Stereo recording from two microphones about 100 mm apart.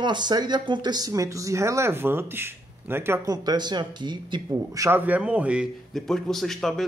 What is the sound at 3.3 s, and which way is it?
Speech, 45° right (ahead or behind).